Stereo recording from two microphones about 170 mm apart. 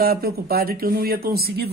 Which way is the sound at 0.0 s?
65° right (ahead or behind).